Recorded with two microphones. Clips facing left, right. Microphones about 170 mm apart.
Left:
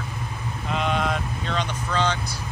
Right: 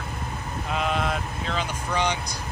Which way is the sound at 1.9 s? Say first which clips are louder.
Left 1 dB; 15° right (ahead or behind).